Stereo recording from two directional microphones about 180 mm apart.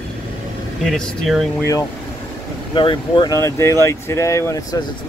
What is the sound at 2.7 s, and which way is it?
Speech, 25° left (ahead or behind).